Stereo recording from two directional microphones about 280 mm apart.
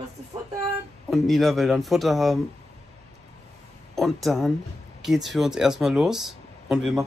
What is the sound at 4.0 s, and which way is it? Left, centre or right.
Speech, centre.